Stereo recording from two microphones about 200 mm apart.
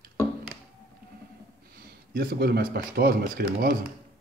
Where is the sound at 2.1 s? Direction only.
50° right (ahead or behind).